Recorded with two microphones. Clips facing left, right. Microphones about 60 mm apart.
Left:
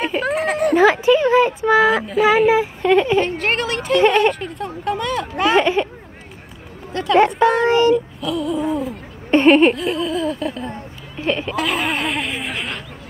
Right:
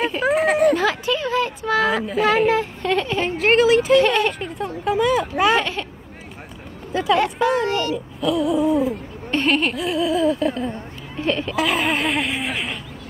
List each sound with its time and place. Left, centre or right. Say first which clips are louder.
0.2 s a sound: right 4 dB; centre
0.7 s a sound: left 8 dB; centre
1.8 s a woman's voice: left 2 dB; centre
3.2 s speech: right 2 dB; centre
5.6 s a child's voice: left 8 dB; left
6.9 s a sound: right 1 dB; centre
7.6 s a child's voice: left 8 dB; left
7.9 s speech: left 3 dB; centre
9.3 s speech: left 8 dB; left
9.8 s speech: right 1 dB; centre